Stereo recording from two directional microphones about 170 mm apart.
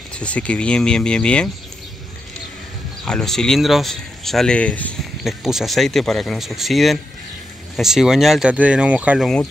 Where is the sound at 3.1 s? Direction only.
5° left (ahead or behind).